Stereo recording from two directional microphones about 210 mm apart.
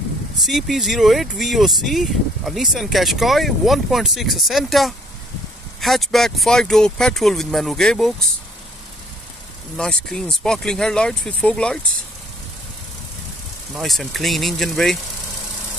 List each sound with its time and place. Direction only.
0.4 s speech: centre (ahead or behind)
9.8 s speech: 5° left (ahead or behind)
13.7 s speech: centre (ahead or behind)